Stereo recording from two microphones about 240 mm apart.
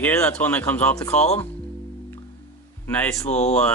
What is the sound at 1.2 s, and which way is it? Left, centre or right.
Speech, left.